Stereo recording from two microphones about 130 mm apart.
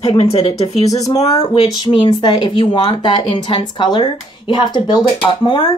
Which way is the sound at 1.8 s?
35° left (ahead or behind).